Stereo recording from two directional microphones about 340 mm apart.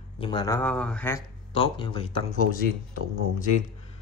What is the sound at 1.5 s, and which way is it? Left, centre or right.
Speech, centre.